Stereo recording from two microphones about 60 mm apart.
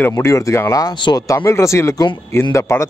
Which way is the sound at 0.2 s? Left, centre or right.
Left.